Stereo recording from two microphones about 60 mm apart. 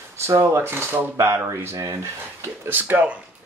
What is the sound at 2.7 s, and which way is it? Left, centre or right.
Speech, right.